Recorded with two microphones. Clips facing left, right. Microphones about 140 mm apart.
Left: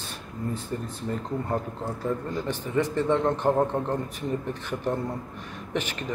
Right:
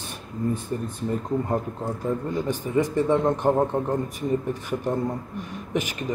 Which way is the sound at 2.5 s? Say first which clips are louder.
Right 2 dB; 15° right (ahead or behind).